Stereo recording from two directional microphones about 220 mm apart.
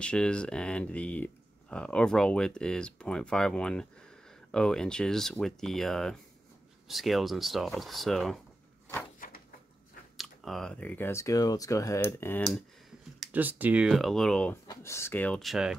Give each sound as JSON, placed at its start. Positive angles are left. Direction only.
{"t": 0.0, "sound": "speech", "side_deg": 5}
{"t": 9.2, "sound": "a sound", "side_deg": 40}
{"t": 10.1, "sound": "speech", "side_deg": 0}
{"t": 13.2, "sound": "speech", "side_deg": -5}